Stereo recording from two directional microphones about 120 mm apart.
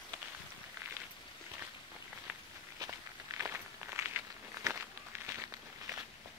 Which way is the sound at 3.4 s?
20° right (ahead or behind).